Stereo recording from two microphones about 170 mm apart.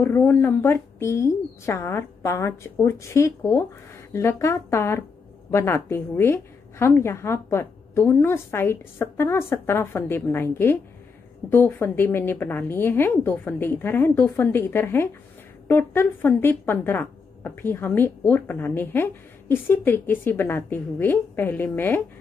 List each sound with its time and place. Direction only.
0.0 s a woman's voice: 15° left (ahead or behind)